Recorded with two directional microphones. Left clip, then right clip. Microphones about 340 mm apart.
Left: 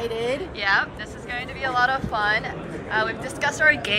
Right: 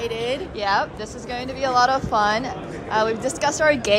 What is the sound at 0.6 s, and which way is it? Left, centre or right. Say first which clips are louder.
A woman's voice: even; centre.